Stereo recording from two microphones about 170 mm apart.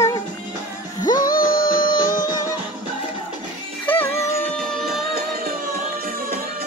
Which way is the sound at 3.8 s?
10° left (ahead or behind).